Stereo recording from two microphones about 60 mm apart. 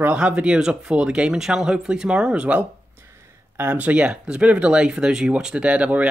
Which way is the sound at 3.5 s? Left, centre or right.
Right.